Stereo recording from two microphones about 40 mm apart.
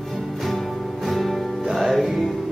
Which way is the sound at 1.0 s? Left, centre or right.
Centre.